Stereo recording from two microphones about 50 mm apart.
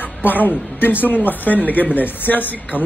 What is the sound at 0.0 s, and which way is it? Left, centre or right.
A woman's voice, left.